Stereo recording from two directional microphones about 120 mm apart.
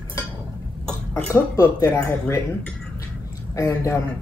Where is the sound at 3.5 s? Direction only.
25° left (ahead or behind).